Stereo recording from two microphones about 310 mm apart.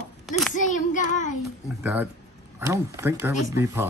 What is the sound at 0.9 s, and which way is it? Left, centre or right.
Child singing, left.